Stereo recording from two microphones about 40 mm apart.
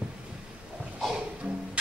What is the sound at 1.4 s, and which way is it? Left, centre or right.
Music, right.